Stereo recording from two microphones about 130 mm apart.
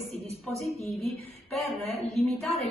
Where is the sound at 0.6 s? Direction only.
Centre (ahead or behind).